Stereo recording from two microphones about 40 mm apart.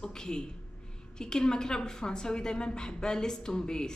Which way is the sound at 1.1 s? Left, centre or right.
Centre.